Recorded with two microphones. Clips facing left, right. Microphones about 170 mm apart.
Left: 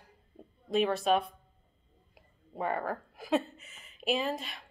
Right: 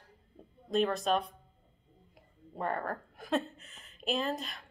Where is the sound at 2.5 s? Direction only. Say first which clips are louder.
Left 2 dB; 5° left (ahead or behind).